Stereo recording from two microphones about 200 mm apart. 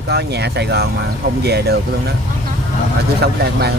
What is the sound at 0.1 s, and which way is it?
Speech, 55° right (ahead or behind).